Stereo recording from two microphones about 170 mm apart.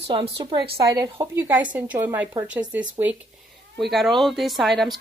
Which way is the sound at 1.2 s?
15° right (ahead or behind).